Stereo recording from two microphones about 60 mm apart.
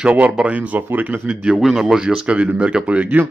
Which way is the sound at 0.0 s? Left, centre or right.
Right.